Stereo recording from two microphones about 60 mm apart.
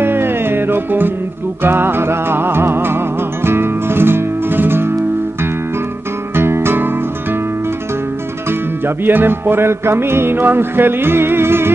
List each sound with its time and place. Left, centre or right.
0.0 s music: right
6.3 s music: right
8.5 s music: right